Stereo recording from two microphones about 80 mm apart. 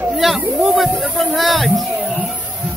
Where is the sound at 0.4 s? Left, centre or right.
Centre.